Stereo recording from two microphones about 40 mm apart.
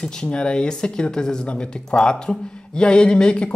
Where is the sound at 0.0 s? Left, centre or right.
Left.